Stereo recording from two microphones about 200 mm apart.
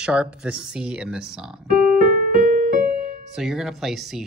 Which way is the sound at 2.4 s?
45° right (ahead or behind).